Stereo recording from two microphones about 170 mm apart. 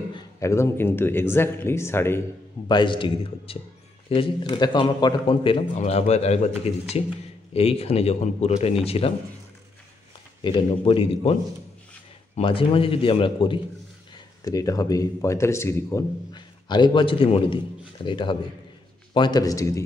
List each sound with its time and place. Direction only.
0.1 s speech: 15° left (ahead or behind)
2.7 s a man's voice: 30° left (ahead or behind)
10.4 s a man's voice: 30° left (ahead or behind)
12.4 s a man's voice: 30° left (ahead or behind)
14.1 s speech: 20° left (ahead or behind)